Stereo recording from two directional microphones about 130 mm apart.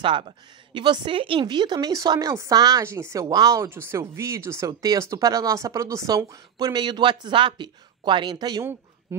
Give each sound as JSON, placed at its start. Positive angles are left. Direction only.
{"t": 0.0, "sound": "a woman's voice", "side_deg": -40}